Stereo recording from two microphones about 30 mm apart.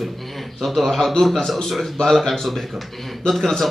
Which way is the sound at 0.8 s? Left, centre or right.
Centre.